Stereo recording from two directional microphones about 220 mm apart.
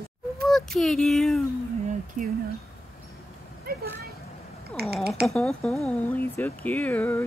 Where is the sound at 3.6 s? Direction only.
50° right (ahead or behind).